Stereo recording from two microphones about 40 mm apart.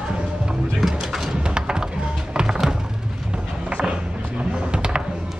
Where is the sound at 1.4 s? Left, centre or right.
Right.